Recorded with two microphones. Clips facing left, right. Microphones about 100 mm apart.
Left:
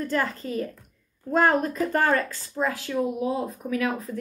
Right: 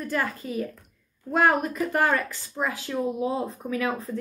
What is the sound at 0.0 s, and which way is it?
Speech, 10° right (ahead or behind).